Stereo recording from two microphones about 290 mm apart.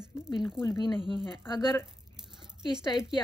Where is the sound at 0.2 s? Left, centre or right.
Centre.